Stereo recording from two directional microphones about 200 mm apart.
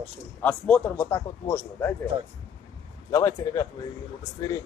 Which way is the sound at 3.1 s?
15° left (ahead or behind).